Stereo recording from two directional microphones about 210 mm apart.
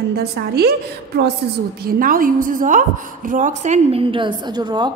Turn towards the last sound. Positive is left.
turn(degrees=-20)  # may be behind; listen again after turning